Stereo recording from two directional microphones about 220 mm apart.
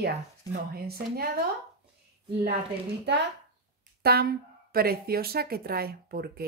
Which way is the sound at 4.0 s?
45° right (ahead or behind).